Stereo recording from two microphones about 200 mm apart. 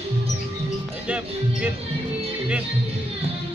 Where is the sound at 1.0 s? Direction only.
5° right (ahead or behind).